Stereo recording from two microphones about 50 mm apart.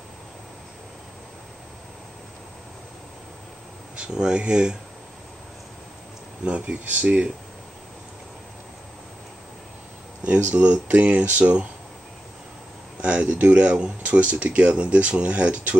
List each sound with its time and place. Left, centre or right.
4.1 s speech: centre
6.4 s speech: right
6.8 s speech: right
10.2 s speech: right
13.0 s speech: right